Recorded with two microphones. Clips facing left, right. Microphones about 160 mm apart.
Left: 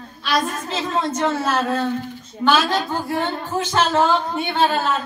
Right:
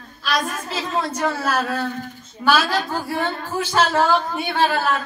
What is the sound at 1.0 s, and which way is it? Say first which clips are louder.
Speech: left 2 dB; 25° left (ahead or behind).